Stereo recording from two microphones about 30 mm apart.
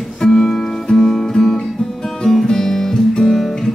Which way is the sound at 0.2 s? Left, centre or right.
Centre.